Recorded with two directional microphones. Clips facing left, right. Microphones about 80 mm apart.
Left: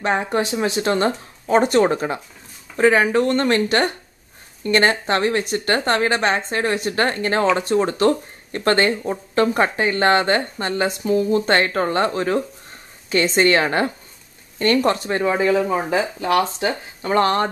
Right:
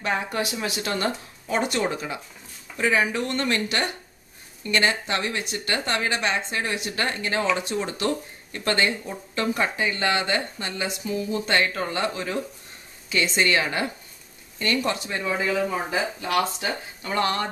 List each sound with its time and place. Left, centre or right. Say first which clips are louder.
0.0 s speech: left 6 dB; left